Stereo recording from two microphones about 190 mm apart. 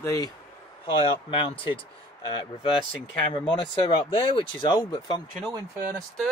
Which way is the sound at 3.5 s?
25° left (ahead or behind).